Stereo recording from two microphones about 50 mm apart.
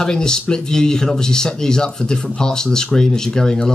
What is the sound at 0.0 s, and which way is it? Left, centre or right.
Speech, centre.